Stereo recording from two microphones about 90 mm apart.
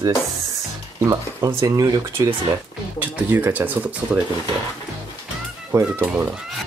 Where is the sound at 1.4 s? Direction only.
60° right (ahead or behind).